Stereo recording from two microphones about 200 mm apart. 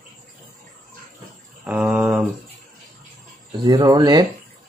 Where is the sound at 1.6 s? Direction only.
5° right (ahead or behind).